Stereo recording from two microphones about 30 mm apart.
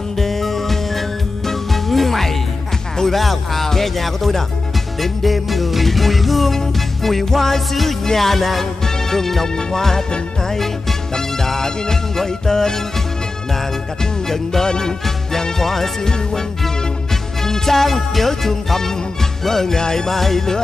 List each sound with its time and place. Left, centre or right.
0.2 s music: centre
14.3 s music: centre